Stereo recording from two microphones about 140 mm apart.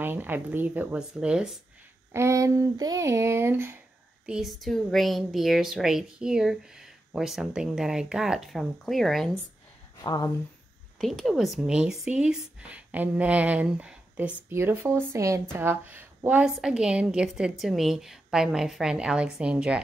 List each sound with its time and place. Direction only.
0.0 s speech: 15° right (ahead or behind)
2.1 s speech: 20° right (ahead or behind)
4.3 s speech: centre (ahead or behind)
10.0 s speech: 30° left (ahead or behind)
11.0 s speech: centre (ahead or behind)